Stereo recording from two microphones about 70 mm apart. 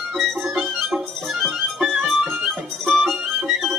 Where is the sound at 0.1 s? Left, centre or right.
Centre.